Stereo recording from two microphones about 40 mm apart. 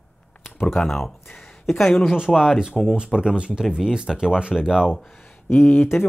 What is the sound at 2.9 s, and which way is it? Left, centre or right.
Speech, right.